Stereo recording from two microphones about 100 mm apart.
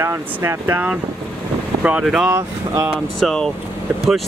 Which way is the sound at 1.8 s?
10° right (ahead or behind).